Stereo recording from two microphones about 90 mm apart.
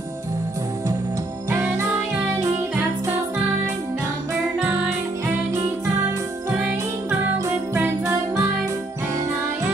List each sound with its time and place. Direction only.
1.5 s music: 25° right (ahead or behind)
6.5 s music: 25° right (ahead or behind)